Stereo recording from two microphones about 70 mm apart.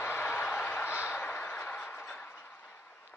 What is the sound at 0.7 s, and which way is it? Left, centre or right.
Vehicle, left.